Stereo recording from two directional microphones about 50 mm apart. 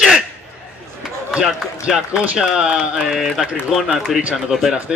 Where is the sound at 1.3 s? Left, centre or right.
Centre.